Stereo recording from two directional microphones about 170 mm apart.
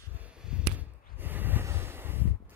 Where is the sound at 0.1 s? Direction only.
5° right (ahead or behind).